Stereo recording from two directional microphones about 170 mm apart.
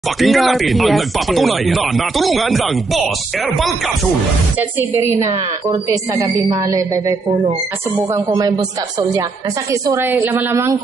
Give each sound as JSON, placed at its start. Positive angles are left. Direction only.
{"t": 0.2, "sound": "speech", "side_deg": 0}
{"t": 4.6, "sound": "a woman's voice", "side_deg": -15}
{"t": 6.5, "sound": "speech", "side_deg": -20}
{"t": 9.7, "sound": "a woman's voice", "side_deg": -15}